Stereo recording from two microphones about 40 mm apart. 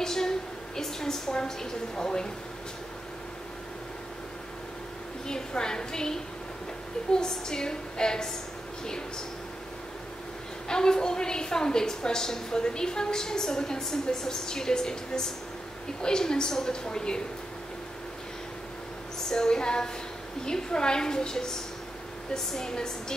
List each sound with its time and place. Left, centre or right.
0.0 s a sound: centre
0.7 s a woman's voice: centre
5.3 s a woman's voice: centre
10.7 s a woman's voice: centre
19.1 s a woman's voice: centre